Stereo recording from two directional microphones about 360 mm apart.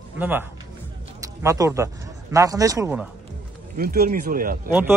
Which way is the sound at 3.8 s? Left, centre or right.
Right.